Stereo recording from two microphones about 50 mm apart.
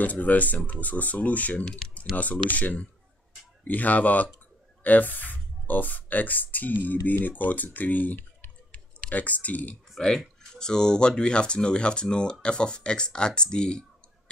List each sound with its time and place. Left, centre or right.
0.0 s speech: left
1.6 s speech: centre
2.1 s speech: left
9.9 s speech: centre